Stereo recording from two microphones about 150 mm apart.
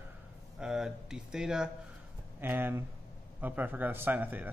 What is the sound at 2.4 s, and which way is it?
Speech, 15° right (ahead or behind).